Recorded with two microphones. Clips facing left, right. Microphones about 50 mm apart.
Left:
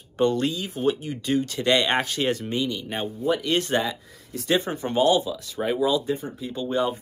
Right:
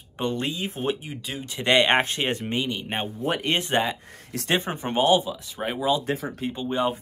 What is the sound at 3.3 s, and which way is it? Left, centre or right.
Speech, right.